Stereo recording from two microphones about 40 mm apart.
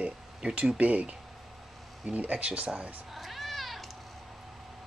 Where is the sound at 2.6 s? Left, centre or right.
Right.